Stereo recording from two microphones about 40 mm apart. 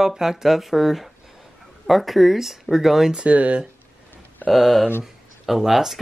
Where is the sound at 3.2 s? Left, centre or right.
Right.